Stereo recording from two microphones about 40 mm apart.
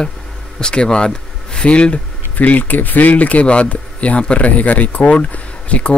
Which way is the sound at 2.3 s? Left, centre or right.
Left.